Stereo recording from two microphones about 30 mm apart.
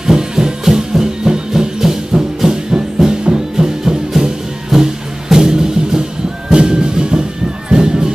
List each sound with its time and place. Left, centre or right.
0.0 s music: centre